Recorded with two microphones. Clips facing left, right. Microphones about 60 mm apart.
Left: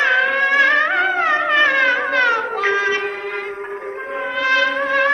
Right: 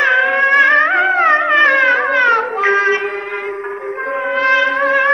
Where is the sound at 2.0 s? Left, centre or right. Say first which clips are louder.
Right 4 dB; right.